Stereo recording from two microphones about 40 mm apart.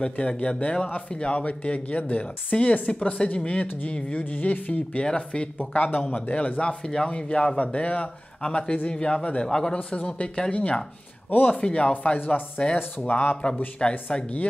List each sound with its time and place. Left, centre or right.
0.0 s speech: left
5.0 s speech: left
5.7 s speech: left
6.6 s speech: centre
9.9 s speech: left
11.6 s speech: left
11.9 s speech: left